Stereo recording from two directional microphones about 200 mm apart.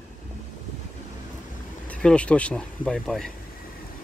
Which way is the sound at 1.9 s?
5° left (ahead or behind).